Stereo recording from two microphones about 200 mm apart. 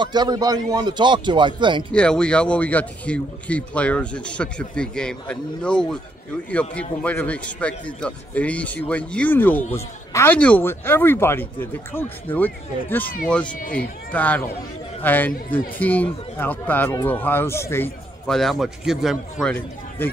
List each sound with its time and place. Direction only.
0.0 s a man's voice: 20° right (ahead or behind)
1.9 s speech: 5° left (ahead or behind)